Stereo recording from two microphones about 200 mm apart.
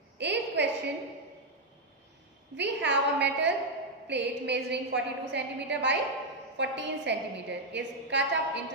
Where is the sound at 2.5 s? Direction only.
60° right (ahead or behind).